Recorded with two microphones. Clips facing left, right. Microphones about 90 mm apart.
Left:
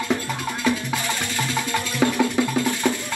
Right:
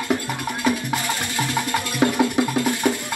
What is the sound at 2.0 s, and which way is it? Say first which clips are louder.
Music: right 1 dB; 15° right (ahead or behind).